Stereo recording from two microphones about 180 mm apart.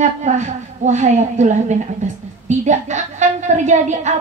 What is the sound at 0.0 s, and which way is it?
A woman's voice, 40° right (ahead or behind).